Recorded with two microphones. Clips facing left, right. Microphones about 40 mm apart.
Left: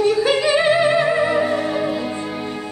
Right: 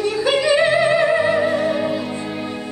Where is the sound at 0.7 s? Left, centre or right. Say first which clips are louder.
Even; centre.